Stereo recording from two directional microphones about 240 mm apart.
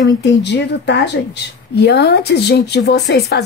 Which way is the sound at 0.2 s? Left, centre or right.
Left.